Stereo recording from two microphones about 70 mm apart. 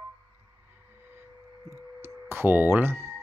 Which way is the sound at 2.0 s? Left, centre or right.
Right.